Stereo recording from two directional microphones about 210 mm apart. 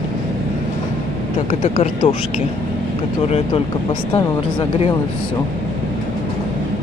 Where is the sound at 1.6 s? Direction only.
30° left (ahead or behind).